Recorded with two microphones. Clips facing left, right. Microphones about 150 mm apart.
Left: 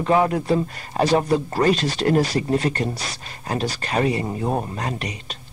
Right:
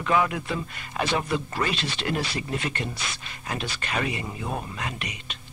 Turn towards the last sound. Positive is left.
turn(degrees=40)  # may be behind; listen again after turning